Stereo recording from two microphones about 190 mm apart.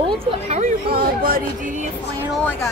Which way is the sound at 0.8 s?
50° right (ahead or behind).